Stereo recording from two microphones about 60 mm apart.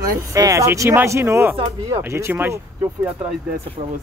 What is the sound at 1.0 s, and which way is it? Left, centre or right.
Speech, right.